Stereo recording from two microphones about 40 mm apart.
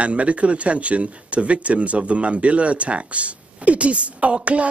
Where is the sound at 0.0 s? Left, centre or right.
Right.